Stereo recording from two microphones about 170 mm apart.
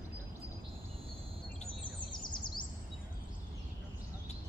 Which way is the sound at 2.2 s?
25° left (ahead or behind).